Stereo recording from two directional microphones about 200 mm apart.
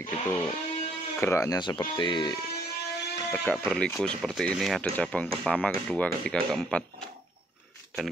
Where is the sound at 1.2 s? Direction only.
15° left (ahead or behind).